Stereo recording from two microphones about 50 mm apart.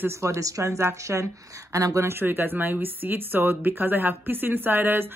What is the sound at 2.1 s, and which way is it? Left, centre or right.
Speech, right.